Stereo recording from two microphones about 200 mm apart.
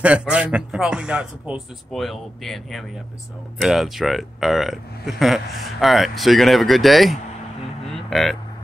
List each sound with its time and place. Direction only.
0.0 s speech: 5° right (ahead or behind)